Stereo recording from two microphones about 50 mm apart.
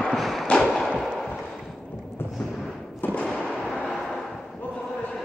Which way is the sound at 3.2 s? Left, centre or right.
Centre.